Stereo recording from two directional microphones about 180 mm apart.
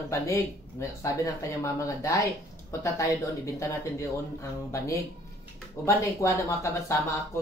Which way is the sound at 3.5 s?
15° left (ahead or behind).